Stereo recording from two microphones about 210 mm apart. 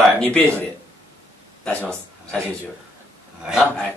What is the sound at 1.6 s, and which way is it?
Speech, 5° left (ahead or behind).